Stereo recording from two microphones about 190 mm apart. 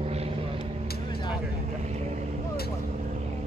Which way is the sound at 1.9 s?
35° right (ahead or behind).